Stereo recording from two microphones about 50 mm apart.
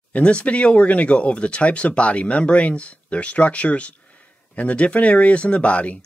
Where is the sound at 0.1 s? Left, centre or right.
Left.